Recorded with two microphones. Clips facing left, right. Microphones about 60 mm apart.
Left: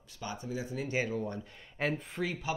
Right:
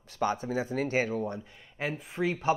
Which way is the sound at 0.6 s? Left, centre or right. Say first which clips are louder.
Right 3 dB; right.